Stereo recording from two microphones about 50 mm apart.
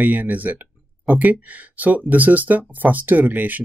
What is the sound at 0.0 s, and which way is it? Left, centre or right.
Speech, right.